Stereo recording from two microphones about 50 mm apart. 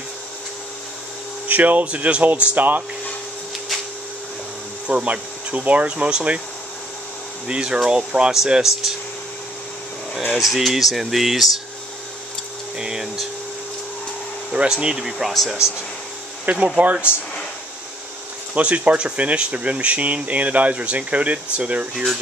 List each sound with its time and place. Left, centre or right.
1.5 s speech: right
2.5 s speech: right
4.8 s speech: right
7.4 s speech: centre
10.1 s speech: centre
12.7 s speech: centre
14.5 s speech: centre
16.5 s speech: right
18.5 s speech: right